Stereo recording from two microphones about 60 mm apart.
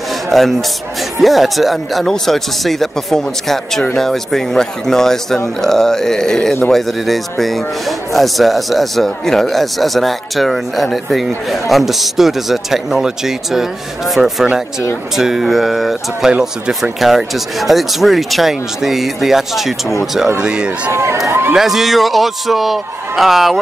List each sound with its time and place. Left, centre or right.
0.3 s speech: centre
16.3 s speech: centre
17.0 s speech: centre
20.3 s speech: centre
20.9 s speech: right
21.3 s a sound: right
21.5 s speech: centre